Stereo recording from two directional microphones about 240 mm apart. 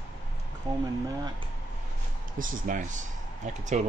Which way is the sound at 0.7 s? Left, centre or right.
Centre.